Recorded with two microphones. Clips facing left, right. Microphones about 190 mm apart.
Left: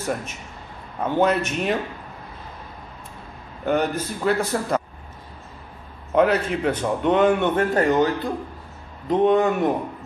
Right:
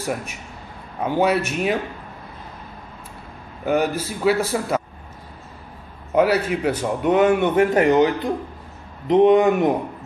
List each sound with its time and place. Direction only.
0.0 s a man's voice: 10° right (ahead or behind)
3.6 s a man's voice: 5° right (ahead or behind)
6.1 s a man's voice: 5° right (ahead or behind)